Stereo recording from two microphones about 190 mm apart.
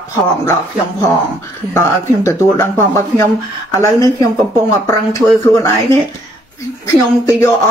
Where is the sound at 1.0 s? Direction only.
15° left (ahead or behind).